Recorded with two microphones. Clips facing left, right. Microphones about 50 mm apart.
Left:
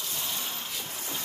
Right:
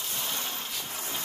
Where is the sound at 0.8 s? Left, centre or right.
Right.